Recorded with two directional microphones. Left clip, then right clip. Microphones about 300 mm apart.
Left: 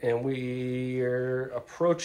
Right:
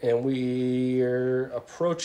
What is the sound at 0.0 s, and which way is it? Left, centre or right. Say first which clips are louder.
A man's voice: right 3 dB; centre.